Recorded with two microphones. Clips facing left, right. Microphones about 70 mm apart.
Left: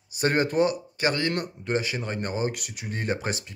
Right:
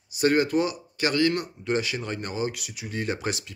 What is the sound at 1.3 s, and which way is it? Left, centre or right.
Speech, left.